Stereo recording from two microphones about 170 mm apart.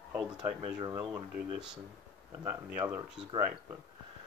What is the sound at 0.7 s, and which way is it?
Speech, 20° right (ahead or behind).